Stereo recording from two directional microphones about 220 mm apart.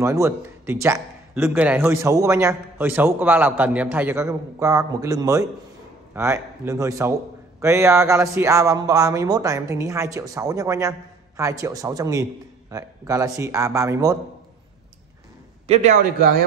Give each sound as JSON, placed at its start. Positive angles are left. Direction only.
{"t": 0.0, "sound": "speech", "side_deg": -10}
{"t": 15.6, "sound": "a man's voice", "side_deg": -30}